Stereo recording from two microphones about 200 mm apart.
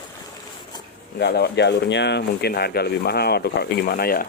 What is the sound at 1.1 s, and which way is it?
Speech, 55° left (ahead or behind).